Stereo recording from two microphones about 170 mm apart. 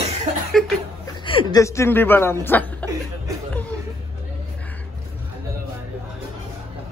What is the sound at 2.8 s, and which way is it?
Chuckle, 10° left (ahead or behind).